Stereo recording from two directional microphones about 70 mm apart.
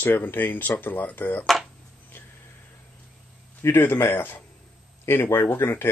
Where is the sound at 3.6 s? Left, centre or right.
Left.